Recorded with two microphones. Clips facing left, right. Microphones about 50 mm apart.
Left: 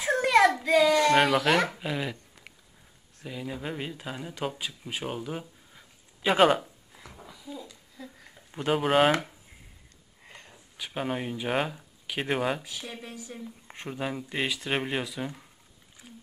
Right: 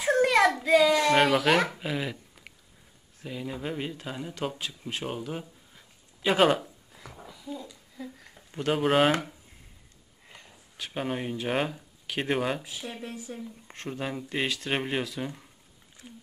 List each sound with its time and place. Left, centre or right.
0.0 s a child's voice: centre
10.3 s speech: centre
16.0 s speech: centre